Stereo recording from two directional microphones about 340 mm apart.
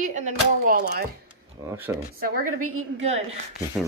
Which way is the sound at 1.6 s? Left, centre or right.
Centre.